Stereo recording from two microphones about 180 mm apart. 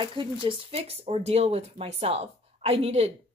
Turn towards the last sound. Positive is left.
turn(degrees=-35)  # may be behind; listen again after turning